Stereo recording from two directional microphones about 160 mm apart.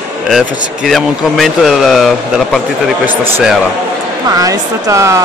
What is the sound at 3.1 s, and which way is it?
Speech, 15° right (ahead or behind).